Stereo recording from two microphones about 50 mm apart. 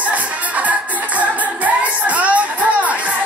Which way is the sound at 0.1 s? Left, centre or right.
Right.